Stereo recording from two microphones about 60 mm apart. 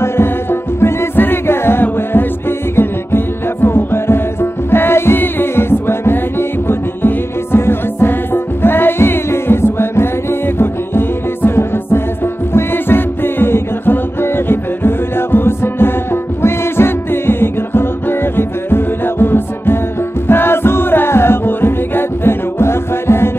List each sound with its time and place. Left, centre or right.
0.0 s music: left